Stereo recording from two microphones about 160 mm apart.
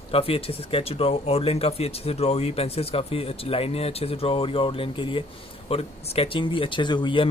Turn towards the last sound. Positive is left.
turn(degrees=30)  # may be behind; listen again after turning